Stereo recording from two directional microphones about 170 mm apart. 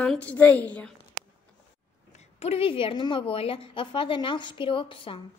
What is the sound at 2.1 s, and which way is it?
A woman's voice, 35° left (ahead or behind).